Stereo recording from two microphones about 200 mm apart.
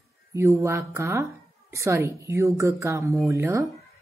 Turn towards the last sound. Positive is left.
turn(degrees=-15)  # may be behind; listen again after turning